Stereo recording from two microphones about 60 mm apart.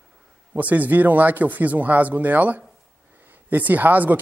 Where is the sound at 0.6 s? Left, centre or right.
Right.